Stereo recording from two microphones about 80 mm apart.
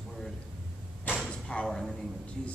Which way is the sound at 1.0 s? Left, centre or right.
Centre.